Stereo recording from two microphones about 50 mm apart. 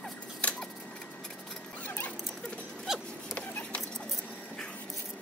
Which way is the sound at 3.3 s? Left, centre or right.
Left.